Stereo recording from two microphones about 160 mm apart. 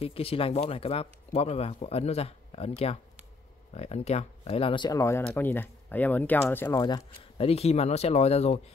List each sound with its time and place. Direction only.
0.0 s speech: 35° left (ahead or behind)
7.3 s speech: 40° left (ahead or behind)